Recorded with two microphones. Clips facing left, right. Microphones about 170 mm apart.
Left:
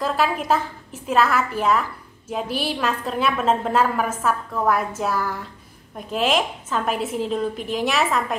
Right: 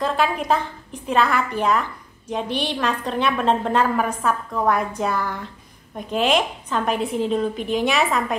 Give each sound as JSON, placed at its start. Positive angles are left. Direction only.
{"t": 0.0, "sound": "a woman's voice", "side_deg": 0}